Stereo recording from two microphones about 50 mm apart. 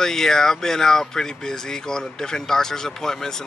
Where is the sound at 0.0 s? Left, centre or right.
Centre.